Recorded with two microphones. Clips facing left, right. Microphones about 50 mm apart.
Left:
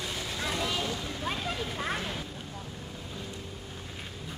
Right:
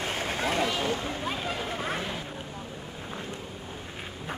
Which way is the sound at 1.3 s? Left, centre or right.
Centre.